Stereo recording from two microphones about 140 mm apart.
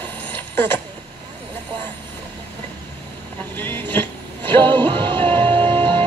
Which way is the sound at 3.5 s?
15° left (ahead or behind).